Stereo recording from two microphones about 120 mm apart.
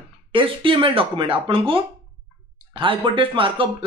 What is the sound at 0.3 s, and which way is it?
Speech, 45° right (ahead or behind).